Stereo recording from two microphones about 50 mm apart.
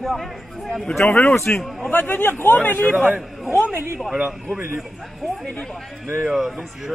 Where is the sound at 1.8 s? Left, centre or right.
Left.